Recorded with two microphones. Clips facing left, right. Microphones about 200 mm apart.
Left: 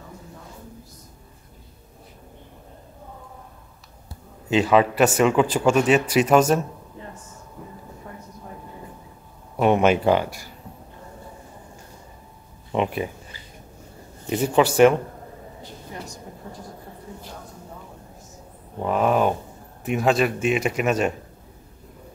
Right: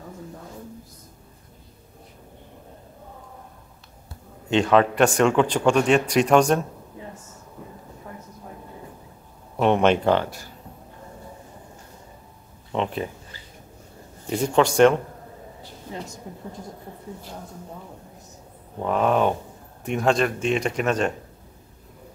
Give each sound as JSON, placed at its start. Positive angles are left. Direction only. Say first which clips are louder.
{"t": 4.5, "sound": "a man's voice", "louder": "even", "side_deg": 5}
{"t": 9.6, "sound": "speech", "louder": "left 1 dB", "side_deg": 5}
{"t": 12.7, "sound": "speech", "louder": "left 2 dB", "side_deg": 10}
{"t": 14.3, "sound": "a man's voice", "louder": "left 1 dB", "side_deg": 5}
{"t": 18.8, "sound": "a man's voice", "louder": "even", "side_deg": 5}